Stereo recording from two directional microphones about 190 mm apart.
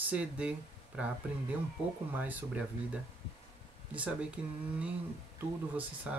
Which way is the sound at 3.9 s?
5° right (ahead or behind).